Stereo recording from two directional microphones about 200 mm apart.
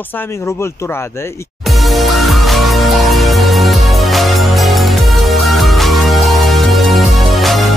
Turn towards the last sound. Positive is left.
turn(degrees=0)  # may be behind; listen again after turning